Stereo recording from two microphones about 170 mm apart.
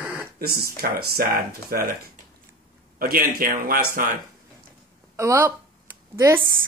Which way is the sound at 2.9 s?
60° right (ahead or behind).